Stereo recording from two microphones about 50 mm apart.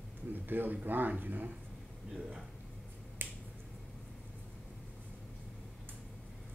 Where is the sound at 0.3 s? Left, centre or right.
Right.